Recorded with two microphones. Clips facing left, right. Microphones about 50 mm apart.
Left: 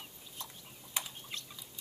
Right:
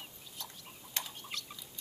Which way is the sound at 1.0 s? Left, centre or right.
Centre.